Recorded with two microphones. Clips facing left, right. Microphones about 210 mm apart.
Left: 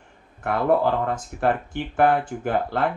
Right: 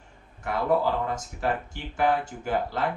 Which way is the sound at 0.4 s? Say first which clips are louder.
Left 4 dB; 60° left (ahead or behind).